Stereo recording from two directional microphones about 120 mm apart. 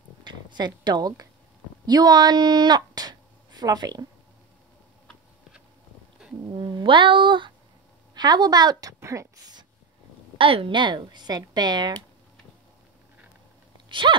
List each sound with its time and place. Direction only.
0.2 s a sound: 40° right (ahead or behind)
1.9 s speech: 35° right (ahead or behind)
6.5 s speech: 40° right (ahead or behind)
9.0 s a sound: 25° right (ahead or behind)
10.3 s a woman's voice: 50° right (ahead or behind)
13.8 s sneeze: 40° right (ahead or behind)